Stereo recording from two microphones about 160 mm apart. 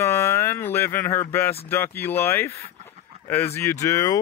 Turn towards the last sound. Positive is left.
turn(degrees=20)  # may be behind; listen again after turning